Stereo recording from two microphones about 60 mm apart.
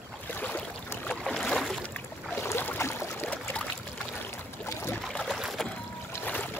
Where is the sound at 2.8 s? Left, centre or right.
Left.